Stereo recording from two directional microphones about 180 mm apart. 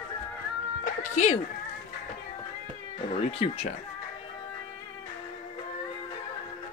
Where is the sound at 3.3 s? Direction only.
35° left (ahead or behind).